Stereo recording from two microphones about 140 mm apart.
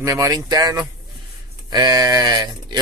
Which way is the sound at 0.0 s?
20° right (ahead or behind).